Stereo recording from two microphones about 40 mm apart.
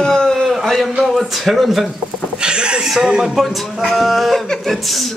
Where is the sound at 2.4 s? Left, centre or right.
Right.